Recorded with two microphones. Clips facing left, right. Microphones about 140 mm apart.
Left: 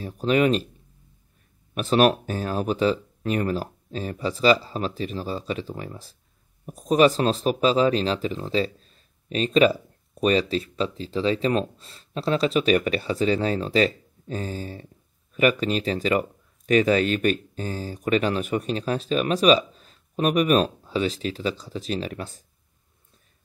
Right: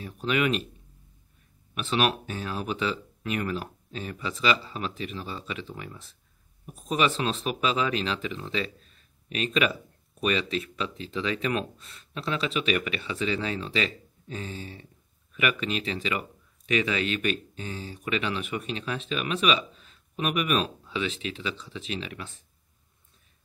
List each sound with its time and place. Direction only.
0.0 s speech: 35° left (ahead or behind)
1.8 s speech: 40° left (ahead or behind)